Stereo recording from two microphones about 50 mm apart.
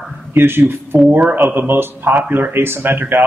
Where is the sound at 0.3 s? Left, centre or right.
Right.